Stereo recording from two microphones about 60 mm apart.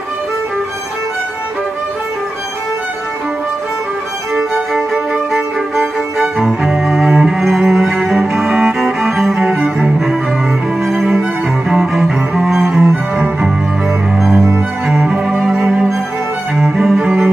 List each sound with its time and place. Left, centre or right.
4.4 s music: centre
8.5 s cello: centre
15.0 s music: centre
16.5 s cello: centre